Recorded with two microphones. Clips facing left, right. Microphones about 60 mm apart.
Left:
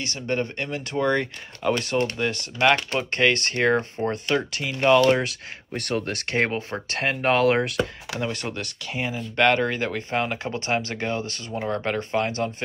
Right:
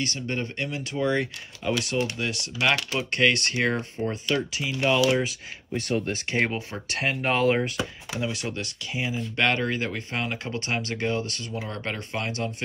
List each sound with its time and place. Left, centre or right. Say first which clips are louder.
0.0 s speech: left 3 dB; left
3.5 s speech: left 4 dB; left
6.3 s speech: left 3 dB; left
8.2 s speech: left 1 dB; left
9.4 s speech: left 5 dB; left